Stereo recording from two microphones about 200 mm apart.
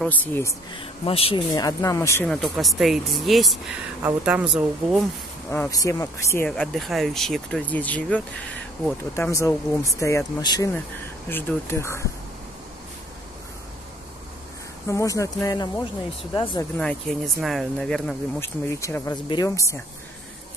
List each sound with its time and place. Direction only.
0.0 s speech: 10° left (ahead or behind)
0.7 s speech: 30° left (ahead or behind)
1.5 s speech: 15° left (ahead or behind)
2.2 s speech: centre (ahead or behind)
5.5 s speech: 15° left (ahead or behind)
14.9 s speech: 15° left (ahead or behind)
16.7 s speech: 5° left (ahead or behind)